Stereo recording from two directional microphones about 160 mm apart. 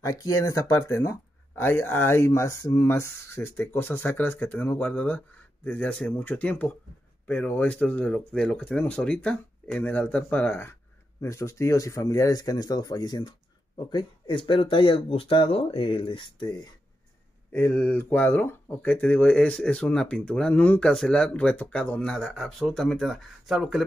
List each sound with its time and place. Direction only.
0.0 s speech: 20° left (ahead or behind)
17.5 s speech: 15° left (ahead or behind)